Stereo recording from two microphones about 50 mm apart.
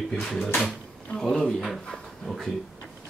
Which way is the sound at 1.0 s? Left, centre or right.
Centre.